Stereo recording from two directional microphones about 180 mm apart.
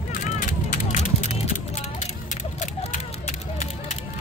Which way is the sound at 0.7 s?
40° left (ahead or behind).